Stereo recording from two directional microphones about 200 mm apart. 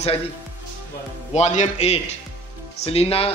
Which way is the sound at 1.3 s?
35° left (ahead or behind).